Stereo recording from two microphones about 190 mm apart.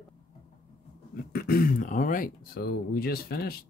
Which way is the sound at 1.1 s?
50° left (ahead or behind).